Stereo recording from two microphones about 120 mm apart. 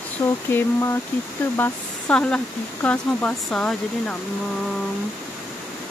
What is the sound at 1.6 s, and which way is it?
Speech, 10° left (ahead or behind).